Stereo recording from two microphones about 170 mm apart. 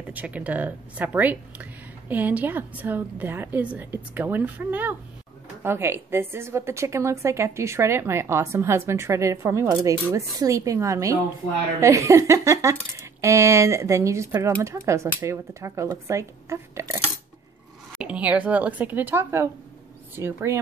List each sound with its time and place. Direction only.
0.1 s speech: 10° right (ahead or behind)
18.0 s speech: 5° right (ahead or behind)